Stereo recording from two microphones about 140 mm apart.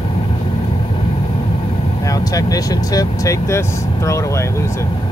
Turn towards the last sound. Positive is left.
turn(degrees=20)  # may be behind; listen again after turning